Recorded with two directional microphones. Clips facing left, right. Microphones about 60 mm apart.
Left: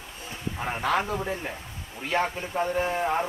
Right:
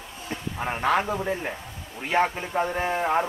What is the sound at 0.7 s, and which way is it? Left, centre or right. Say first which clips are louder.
A man's voice: right 3 dB; centre.